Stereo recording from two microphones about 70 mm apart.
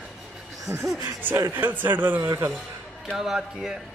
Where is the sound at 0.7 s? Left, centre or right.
Right.